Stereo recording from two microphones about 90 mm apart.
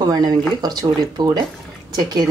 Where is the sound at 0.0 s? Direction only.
45° right (ahead or behind).